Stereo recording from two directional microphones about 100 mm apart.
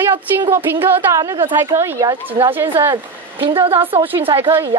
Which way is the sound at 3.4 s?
60° right (ahead or behind).